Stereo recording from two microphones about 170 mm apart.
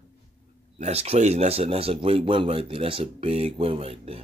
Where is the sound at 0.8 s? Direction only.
40° right (ahead or behind).